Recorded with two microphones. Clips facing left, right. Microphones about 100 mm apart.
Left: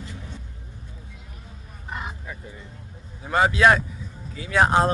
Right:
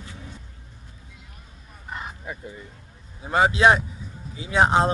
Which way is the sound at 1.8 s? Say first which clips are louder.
Left 1 dB; 5° left (ahead or behind).